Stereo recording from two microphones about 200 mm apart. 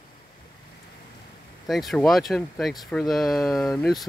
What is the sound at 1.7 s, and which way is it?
Speech, centre (ahead or behind).